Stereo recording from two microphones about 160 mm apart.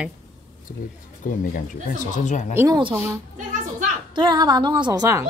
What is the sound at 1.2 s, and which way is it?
Speech, 55° left (ahead or behind).